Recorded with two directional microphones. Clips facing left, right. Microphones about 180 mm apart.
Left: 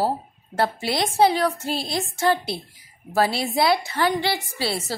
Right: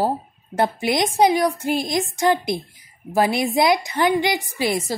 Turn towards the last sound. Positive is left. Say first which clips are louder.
# right 4 dB
turn(degrees=-15)  # may be behind; listen again after turning